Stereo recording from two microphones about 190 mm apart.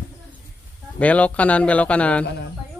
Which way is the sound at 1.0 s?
5° left (ahead or behind).